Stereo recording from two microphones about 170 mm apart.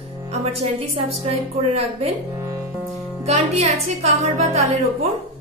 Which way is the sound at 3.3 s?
40° right (ahead or behind).